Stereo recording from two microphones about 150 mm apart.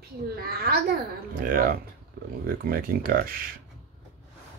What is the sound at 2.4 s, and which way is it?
Speech, 80° right.